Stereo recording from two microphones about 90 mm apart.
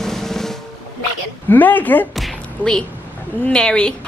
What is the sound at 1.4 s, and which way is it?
Speech, 20° left (ahead or behind).